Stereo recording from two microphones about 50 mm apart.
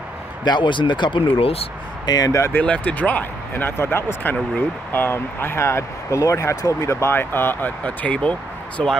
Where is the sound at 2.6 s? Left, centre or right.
Left.